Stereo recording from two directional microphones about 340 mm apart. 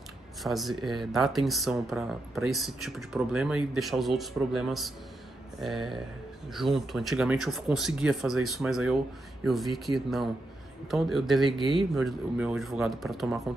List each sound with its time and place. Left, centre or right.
0.4 s speech: centre